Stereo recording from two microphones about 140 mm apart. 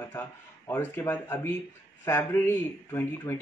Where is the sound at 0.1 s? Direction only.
15° left (ahead or behind).